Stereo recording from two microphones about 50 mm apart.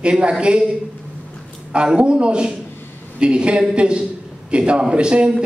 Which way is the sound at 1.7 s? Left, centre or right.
Centre.